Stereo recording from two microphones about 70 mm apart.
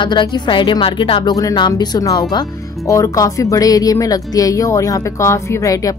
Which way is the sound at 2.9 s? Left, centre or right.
Left.